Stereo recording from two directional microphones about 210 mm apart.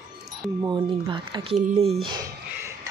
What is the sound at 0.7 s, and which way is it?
Speech, 20° right (ahead or behind).